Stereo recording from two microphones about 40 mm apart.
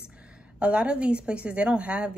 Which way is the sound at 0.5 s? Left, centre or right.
Right.